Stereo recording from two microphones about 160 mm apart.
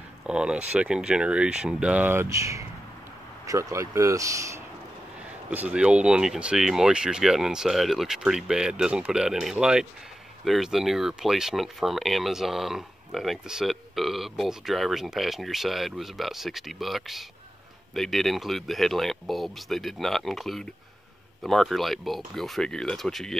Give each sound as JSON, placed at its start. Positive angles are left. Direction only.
{"t": 0.3, "sound": "speech", "side_deg": -5}